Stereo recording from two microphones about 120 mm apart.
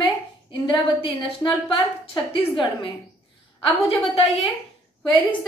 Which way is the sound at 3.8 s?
55° left (ahead or behind).